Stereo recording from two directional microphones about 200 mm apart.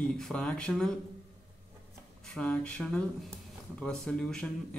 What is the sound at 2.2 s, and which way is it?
A man's voice, 5° left (ahead or behind).